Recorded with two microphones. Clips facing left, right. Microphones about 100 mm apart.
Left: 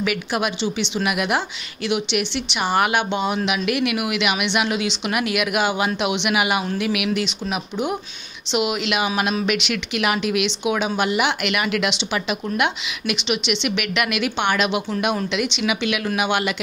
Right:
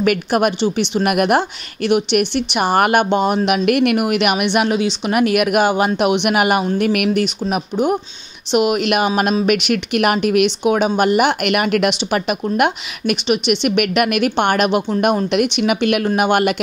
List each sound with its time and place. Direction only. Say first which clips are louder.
0.0 s speech: right 7 dB; 50° right (ahead or behind)